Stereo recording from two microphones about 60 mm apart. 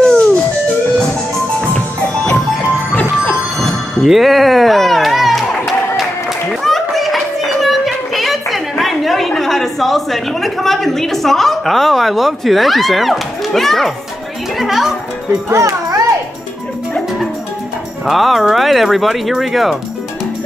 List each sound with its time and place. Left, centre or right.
0.0 s music: centre
2.9 s music: left
3.5 s music: centre
6.6 s a sound: centre
9.4 s a woman's voice: centre
15.5 s a child's voice: right
18.0 s speech: centre